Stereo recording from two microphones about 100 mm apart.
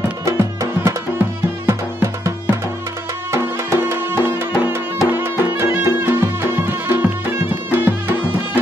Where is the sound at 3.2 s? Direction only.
25° right (ahead or behind).